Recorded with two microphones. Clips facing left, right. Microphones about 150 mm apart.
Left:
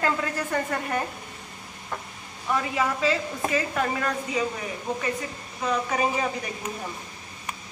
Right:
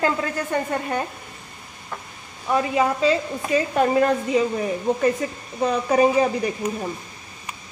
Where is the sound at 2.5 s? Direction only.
20° right (ahead or behind).